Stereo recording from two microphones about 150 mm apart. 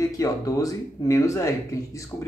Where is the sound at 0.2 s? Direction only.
20° left (ahead or behind).